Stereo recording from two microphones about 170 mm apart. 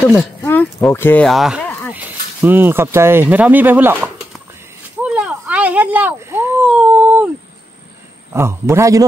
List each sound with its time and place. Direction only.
0.0 s speech: 5° left (ahead or behind)
0.4 s a sound: 15° left (ahead or behind)
0.9 s speech: 10° left (ahead or behind)
1.2 s speech: centre (ahead or behind)
5.0 s a sound: 5° right (ahead or behind)
8.3 s a man's voice: 15° right (ahead or behind)